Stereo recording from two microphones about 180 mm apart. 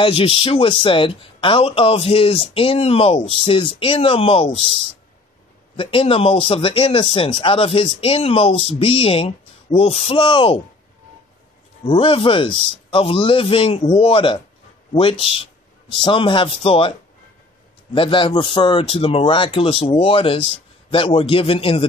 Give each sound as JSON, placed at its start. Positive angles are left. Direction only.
{"t": 0.0, "sound": "speech", "side_deg": 30}
{"t": 5.8, "sound": "speech", "side_deg": 30}
{"t": 11.8, "sound": "a man's voice", "side_deg": 30}
{"t": 17.9, "sound": "a man's voice", "side_deg": 30}